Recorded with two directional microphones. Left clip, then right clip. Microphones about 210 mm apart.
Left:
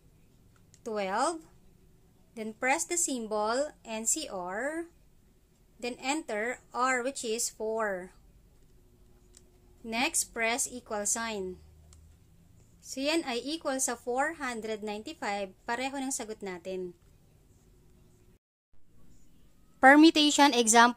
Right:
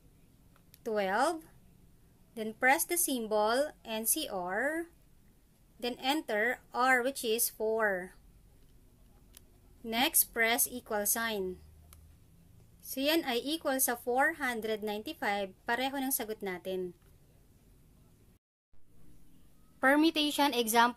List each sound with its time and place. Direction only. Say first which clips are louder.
0.8 s a woman's voice: even; centre (ahead or behind)
9.8 s a woman's voice: even; 5° right (ahead or behind)
12.9 s a woman's voice: even; 5° right (ahead or behind)
19.8 s a woman's voice: left 8 dB; 15° left (ahead or behind)